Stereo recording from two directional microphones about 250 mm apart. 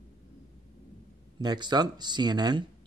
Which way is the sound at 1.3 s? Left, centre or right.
Centre.